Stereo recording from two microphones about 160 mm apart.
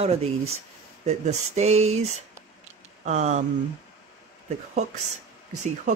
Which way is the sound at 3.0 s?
45° right (ahead or behind).